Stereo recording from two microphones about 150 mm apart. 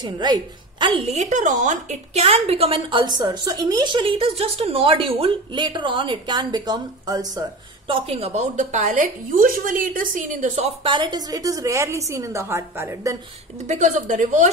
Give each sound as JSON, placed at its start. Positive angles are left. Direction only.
{"t": 0.0, "sound": "a woman's voice", "side_deg": -30}
{"t": 7.9, "sound": "a woman's voice", "side_deg": -45}
{"t": 10.6, "sound": "a woman's voice", "side_deg": -35}
{"t": 13.7, "sound": "a woman's voice", "side_deg": -55}